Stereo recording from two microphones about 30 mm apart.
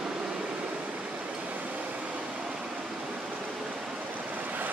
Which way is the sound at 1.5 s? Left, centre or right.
Right.